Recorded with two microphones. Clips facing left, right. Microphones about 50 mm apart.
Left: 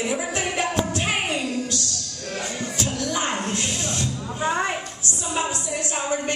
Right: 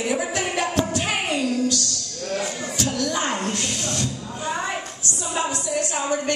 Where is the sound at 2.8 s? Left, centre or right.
Centre.